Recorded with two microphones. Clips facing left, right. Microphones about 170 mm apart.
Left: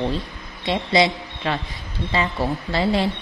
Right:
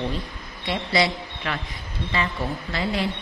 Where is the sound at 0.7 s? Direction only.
25° left (ahead or behind).